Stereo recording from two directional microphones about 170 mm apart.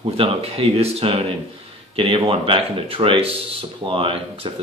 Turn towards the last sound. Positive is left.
turn(degrees=-30)  # may be behind; listen again after turning